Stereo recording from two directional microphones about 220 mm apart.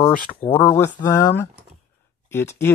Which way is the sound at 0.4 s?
25° left (ahead or behind).